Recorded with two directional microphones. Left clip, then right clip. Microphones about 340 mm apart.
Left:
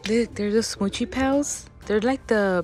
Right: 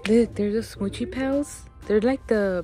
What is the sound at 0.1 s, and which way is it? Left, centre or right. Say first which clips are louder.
Speech: right 1 dB; centre.